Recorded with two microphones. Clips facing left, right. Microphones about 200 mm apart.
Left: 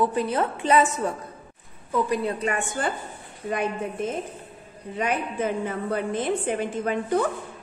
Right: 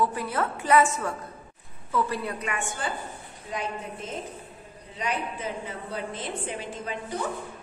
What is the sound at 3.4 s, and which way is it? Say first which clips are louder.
A woman's voice: left 7 dB; 55° left (ahead or behind).